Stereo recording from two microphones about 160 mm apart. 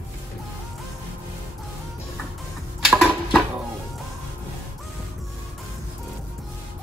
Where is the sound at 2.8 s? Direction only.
Centre (ahead or behind).